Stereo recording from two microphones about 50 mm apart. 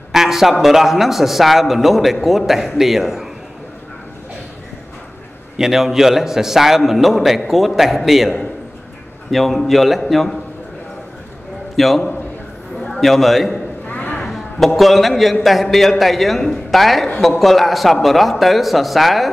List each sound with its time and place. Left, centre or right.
0.1 s a man's voice: centre
5.6 s a man's voice: centre
11.7 s a man's voice: centre
13.8 s vehicle: left
14.2 s a sound: centre
14.8 s a man's voice: centre